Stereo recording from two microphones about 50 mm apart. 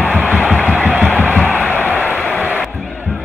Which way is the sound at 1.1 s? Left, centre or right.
Left.